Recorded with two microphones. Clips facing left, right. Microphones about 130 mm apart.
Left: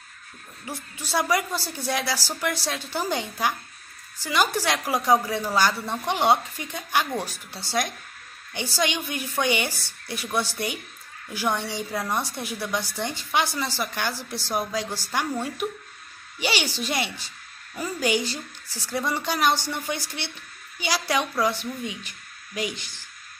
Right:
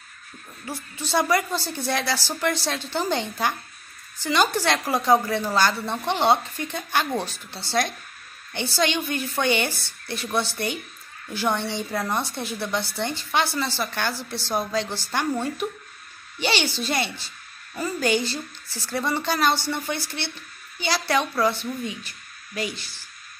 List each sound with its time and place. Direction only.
0.7 s a woman's voice: 10° left (ahead or behind)
16.3 s a woman's voice: 10° left (ahead or behind)